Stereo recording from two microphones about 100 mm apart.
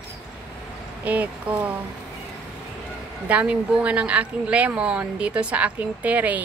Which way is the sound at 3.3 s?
15° right (ahead or behind).